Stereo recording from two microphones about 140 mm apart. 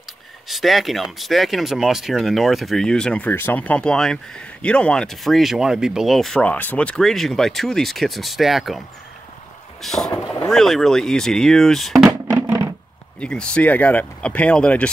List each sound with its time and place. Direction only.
0.5 s speech: centre (ahead or behind)
9.8 s vehicle: centre (ahead or behind)
10.5 s speech: centre (ahead or behind)
12.1 s music: 20° right (ahead or behind)
13.2 s speech: 5° left (ahead or behind)